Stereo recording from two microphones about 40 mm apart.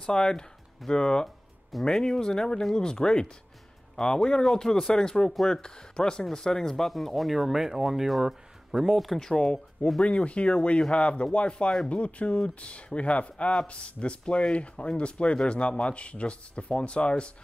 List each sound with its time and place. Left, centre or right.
0.0 s speech: centre
9.3 s speech: left